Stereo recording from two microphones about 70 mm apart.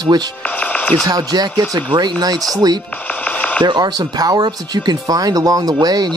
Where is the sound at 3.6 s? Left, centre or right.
Right.